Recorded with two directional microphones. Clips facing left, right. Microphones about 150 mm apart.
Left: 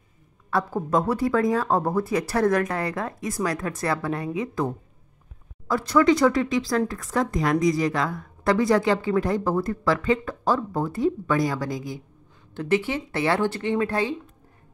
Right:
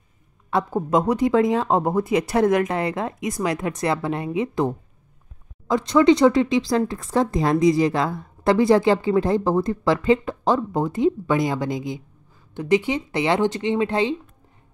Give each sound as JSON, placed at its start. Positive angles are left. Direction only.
{"t": 0.5, "sound": "a woman's voice", "side_deg": -20}